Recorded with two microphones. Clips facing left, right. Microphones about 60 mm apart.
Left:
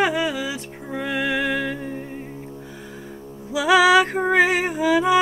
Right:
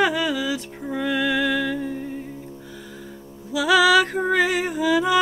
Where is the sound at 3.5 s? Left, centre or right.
Left.